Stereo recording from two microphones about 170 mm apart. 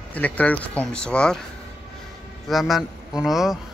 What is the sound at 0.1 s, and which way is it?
Speech, 10° left (ahead or behind).